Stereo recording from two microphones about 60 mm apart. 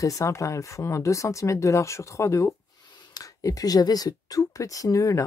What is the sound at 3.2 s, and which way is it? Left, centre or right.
Speech, left.